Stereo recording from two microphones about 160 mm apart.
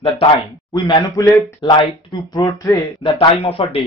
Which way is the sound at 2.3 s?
20° left (ahead or behind).